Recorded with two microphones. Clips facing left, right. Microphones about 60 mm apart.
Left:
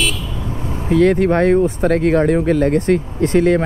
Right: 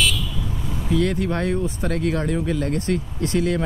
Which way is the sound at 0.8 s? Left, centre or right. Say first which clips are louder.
Left 9 dB; left.